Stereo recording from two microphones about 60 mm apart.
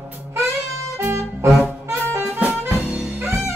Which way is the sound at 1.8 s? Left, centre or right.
Right.